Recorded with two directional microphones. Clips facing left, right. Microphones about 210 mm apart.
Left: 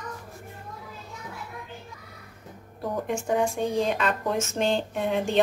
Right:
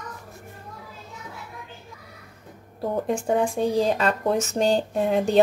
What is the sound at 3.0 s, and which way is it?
Speech, 35° right (ahead or behind).